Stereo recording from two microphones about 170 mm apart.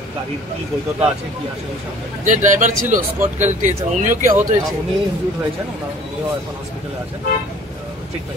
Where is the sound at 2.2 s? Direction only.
45° right (ahead or behind).